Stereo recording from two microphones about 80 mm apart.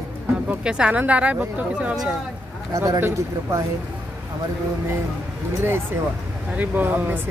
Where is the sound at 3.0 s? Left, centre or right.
Right.